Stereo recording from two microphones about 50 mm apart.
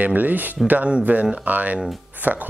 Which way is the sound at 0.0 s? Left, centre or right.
Right.